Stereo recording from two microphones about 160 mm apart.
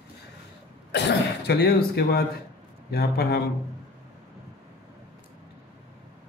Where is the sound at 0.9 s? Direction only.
90° left.